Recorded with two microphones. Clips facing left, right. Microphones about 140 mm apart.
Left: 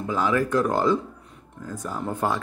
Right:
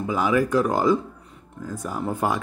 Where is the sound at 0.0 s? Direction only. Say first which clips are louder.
Right 2 dB; 10° right (ahead or behind).